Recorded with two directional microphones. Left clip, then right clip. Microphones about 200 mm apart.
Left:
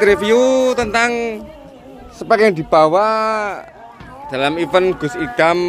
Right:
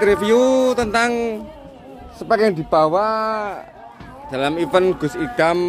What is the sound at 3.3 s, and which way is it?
Speech, centre (ahead or behind).